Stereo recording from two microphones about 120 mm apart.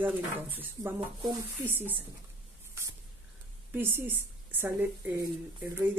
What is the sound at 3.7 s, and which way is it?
A woman's voice, 20° right (ahead or behind).